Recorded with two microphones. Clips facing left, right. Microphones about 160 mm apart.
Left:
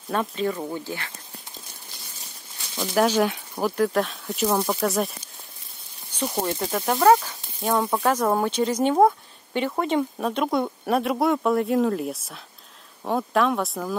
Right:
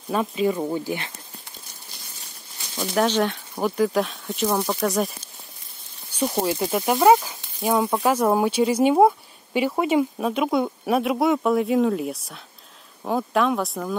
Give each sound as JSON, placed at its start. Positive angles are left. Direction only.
{"t": 0.1, "sound": "speech", "side_deg": -5}
{"t": 0.5, "sound": "speech", "side_deg": -15}
{"t": 2.8, "sound": "speech", "side_deg": 0}
{"t": 6.1, "sound": "speech", "side_deg": -10}